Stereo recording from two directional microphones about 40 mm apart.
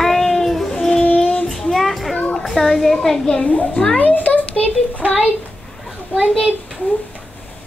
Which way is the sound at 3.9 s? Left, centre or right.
Left.